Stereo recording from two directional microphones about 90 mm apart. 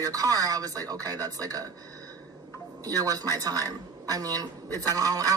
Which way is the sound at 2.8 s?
40° right (ahead or behind).